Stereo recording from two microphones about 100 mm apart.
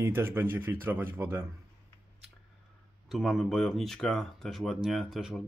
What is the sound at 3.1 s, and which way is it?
Speech, centre (ahead or behind).